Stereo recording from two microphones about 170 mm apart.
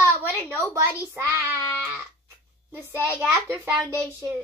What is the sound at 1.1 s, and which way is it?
Speech, 10° right (ahead or behind).